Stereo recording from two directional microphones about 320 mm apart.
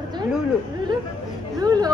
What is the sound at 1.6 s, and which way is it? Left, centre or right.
Speech, centre.